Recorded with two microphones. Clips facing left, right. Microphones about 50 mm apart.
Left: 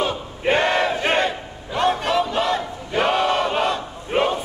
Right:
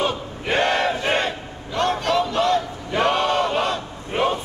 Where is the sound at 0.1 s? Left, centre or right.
Left.